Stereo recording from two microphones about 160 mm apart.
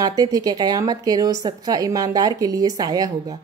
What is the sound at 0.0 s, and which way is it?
Speech, 25° right (ahead or behind).